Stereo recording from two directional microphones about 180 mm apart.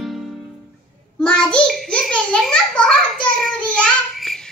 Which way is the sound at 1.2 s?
5° left (ahead or behind).